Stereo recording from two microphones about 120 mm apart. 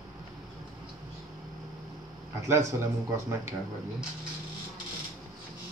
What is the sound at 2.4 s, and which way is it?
A man's voice, 20° right (ahead or behind).